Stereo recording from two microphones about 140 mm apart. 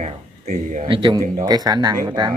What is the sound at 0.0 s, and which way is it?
Speech, 60° right (ahead or behind).